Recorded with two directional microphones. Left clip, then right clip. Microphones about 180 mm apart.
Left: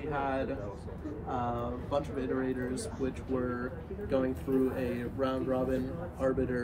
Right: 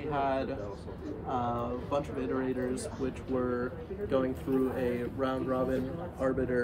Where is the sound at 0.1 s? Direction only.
55° right (ahead or behind).